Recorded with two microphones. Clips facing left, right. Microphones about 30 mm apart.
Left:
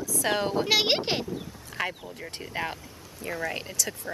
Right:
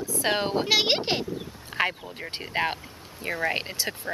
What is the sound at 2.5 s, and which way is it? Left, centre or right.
Speech, right.